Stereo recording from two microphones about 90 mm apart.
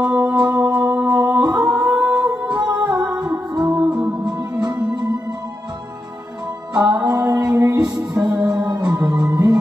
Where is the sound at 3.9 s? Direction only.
10° right (ahead or behind).